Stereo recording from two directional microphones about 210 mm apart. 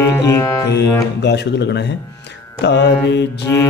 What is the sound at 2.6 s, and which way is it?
Music, 55° left (ahead or behind).